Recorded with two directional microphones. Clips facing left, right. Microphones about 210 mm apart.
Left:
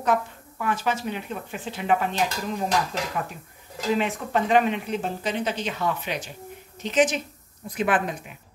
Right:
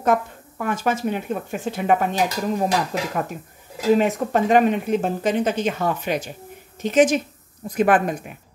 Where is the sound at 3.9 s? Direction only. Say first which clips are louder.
Right 6 dB; 45° right (ahead or behind).